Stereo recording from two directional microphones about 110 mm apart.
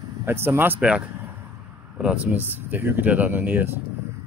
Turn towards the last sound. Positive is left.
turn(degrees=-15)  # may be behind; listen again after turning